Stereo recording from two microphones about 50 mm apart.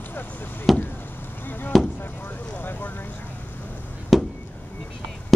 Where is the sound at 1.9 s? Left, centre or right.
Left.